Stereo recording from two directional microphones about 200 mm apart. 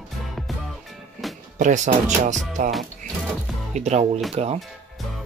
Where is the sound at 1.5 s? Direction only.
40° right (ahead or behind).